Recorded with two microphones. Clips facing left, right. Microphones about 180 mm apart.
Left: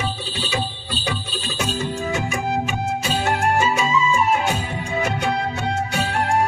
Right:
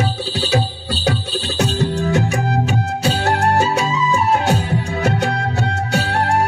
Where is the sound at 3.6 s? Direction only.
70° right (ahead or behind).